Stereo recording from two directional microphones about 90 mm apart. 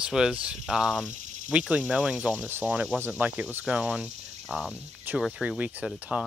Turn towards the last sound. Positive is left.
turn(degrees=-15)  # may be behind; listen again after turning